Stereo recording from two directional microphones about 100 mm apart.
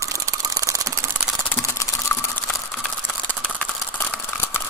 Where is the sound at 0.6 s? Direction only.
35° right (ahead or behind).